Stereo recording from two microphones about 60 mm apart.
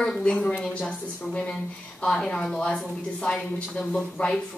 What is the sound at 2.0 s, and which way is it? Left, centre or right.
A woman's voice, centre.